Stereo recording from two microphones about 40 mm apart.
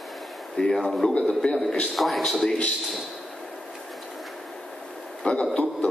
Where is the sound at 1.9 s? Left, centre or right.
Centre.